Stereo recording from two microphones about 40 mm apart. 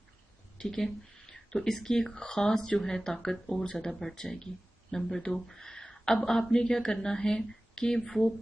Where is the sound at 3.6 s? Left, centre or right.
Left.